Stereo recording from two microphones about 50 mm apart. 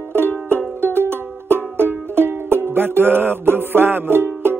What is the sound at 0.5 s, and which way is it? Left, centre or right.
Music, right.